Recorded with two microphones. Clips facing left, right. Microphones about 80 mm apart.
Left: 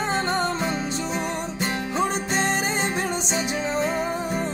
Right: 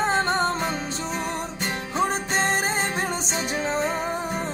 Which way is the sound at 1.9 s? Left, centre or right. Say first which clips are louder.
Right 2 dB; right.